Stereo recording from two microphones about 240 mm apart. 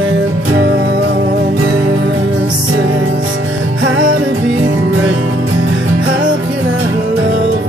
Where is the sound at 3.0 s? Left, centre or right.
Right.